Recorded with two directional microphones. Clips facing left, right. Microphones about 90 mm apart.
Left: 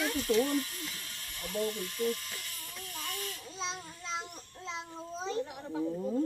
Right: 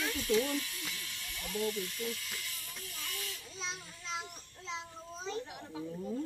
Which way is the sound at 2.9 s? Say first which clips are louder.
Left 5 dB; 45° left (ahead or behind).